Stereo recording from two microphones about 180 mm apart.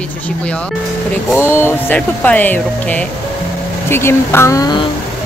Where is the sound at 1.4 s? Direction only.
10° left (ahead or behind).